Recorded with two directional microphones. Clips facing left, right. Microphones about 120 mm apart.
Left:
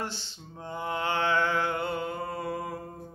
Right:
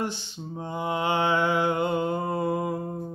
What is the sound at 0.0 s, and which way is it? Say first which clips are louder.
Mantra: right 6 dB; 15° right (ahead or behind).